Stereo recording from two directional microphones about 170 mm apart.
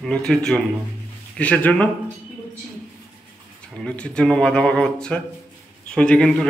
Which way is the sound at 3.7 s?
5° left (ahead or behind).